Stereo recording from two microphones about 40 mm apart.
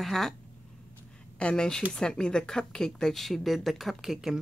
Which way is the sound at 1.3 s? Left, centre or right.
Left.